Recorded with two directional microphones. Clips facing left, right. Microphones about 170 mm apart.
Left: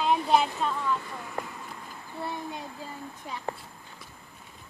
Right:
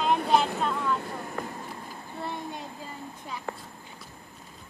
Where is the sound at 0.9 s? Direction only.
50° right (ahead or behind).